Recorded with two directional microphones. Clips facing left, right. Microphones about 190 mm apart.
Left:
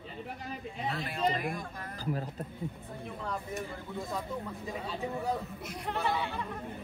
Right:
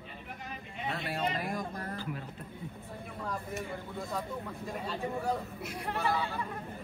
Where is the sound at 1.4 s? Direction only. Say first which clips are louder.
Right 1 dB; 35° right (ahead or behind).